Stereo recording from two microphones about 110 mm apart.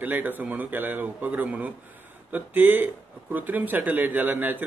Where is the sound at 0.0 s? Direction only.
15° right (ahead or behind).